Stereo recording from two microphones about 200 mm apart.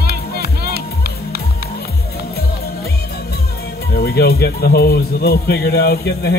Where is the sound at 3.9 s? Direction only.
50° left (ahead or behind).